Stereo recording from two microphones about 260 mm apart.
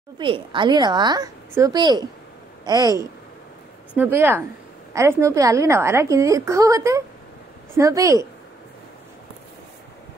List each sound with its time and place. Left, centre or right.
0.2 s a woman's voice: centre